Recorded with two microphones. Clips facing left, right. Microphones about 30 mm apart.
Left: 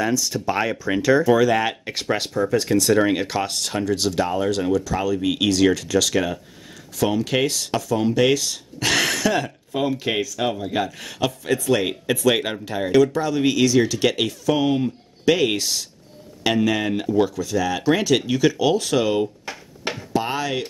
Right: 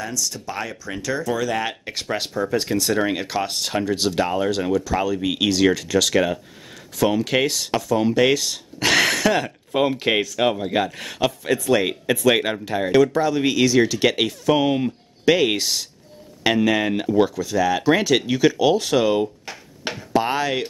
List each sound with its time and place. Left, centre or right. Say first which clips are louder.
0.0 s speech: left 6 dB; centre
3.4 s speech: even; centre
9.7 s speech: right 4 dB; right
10.4 s speech: right 3 dB; centre
20.1 s speech: right 3 dB; centre